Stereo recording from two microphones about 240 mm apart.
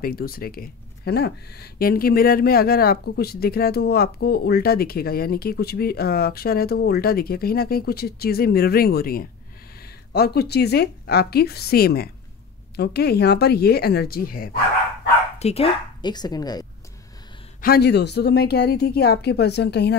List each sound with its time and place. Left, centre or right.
0.0 s speech: left
15.3 s speech: left
17.6 s a woman's voice: left